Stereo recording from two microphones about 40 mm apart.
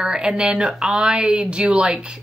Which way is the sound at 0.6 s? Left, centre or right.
Centre.